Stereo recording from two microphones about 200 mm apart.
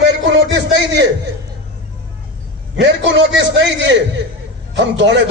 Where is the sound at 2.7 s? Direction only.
60° right (ahead or behind).